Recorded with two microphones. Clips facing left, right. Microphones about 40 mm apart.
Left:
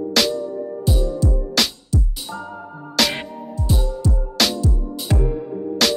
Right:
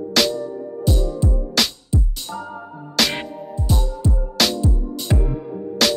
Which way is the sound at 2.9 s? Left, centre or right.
Centre.